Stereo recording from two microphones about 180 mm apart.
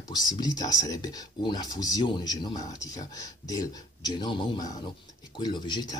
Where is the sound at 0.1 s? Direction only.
20° left (ahead or behind).